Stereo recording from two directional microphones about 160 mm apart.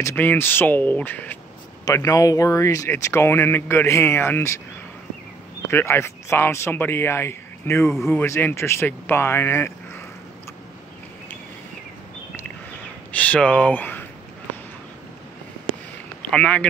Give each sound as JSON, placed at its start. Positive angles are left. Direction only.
{"t": 0.0, "sound": "speech", "side_deg": 10}
{"t": 1.9, "sound": "speech", "side_deg": 20}
{"t": 5.7, "sound": "speech", "side_deg": 15}
{"t": 13.1, "sound": "speech", "side_deg": 10}
{"t": 16.2, "sound": "speech", "side_deg": 5}